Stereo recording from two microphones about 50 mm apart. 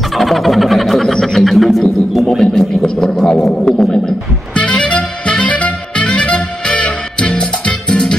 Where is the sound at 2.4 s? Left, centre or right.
Centre.